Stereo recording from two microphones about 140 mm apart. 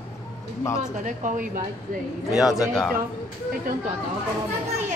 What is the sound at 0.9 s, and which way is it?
Speech, 65° right (ahead or behind).